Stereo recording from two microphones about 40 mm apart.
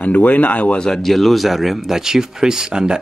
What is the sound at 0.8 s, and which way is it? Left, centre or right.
Speech, centre.